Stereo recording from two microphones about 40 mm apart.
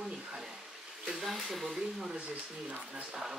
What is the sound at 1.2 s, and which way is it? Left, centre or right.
Speech, centre.